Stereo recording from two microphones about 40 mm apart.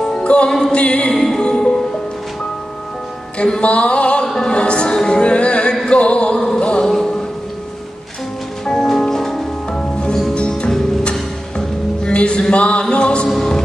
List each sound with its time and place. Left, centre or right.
0.2 s music: left
1.1 s music: centre
3.3 s music: centre
3.6 s a sound: left
4.5 s music: left
8.6 s music: centre
9.7 s music: left
11.5 s music: left